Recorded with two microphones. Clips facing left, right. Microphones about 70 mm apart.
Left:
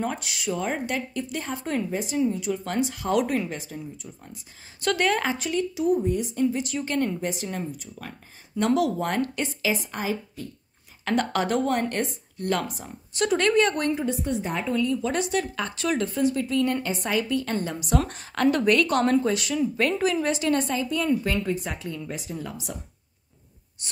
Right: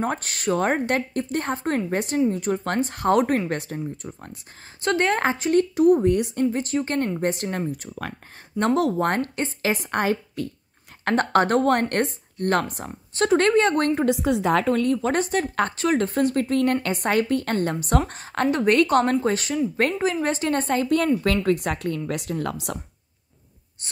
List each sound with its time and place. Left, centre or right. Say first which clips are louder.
0.0 s speech: right 4 dB; right
4.8 s a woman's voice: right 2 dB; right
5.5 s speech: right 8 dB; right
8.5 s a woman's voice: right 2 dB; right
11.1 s speech: right 5 dB; right
13.1 s a woman's voice: right 3 dB; right
13.7 s speech: right 4 dB; right
14.0 s a woman's voice: right 6 dB; right
18.1 s a woman's voice: even; right